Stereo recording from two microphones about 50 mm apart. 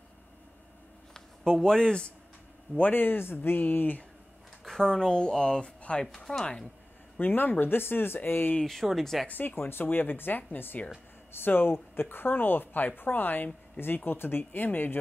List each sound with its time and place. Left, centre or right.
1.1 s a man's voice: centre
2.8 s speech: left
4.6 s speech: centre
6.1 s speech: centre
6.4 s speech: centre
7.2 s speech: left
8.8 s speech: centre
9.3 s speech: left